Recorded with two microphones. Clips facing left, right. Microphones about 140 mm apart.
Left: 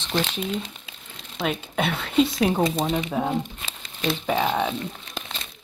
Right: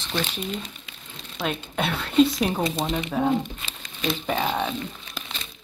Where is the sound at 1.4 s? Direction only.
Centre (ahead or behind).